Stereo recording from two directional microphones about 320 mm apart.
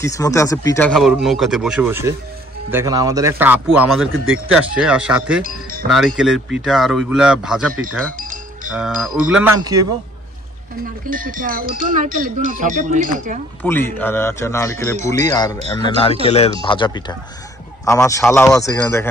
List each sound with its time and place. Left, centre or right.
0.0 s speech: centre
5.4 s speech: right
5.9 s speech: centre
8.7 s speech: centre
11.1 s speech: right
13.6 s a man's voice: centre